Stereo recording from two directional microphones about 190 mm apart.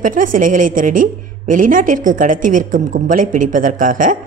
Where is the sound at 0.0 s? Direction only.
45° right (ahead or behind).